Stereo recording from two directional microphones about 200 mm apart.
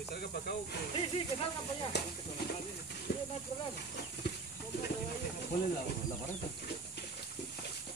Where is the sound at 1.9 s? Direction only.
55° left (ahead or behind).